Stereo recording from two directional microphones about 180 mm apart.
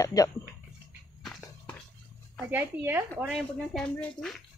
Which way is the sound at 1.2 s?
Centre (ahead or behind).